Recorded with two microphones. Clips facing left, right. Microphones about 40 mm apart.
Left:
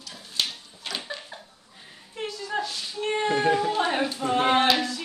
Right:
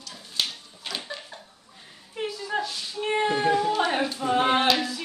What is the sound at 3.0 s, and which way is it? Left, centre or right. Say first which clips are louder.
Child singing: even; centre.